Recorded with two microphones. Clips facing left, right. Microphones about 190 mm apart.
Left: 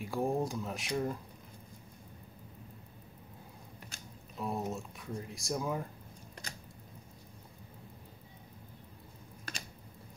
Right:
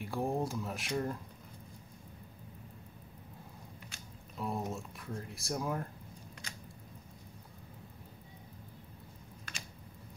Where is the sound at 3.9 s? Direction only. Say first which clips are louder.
Left 1 dB; 40° left (ahead or behind).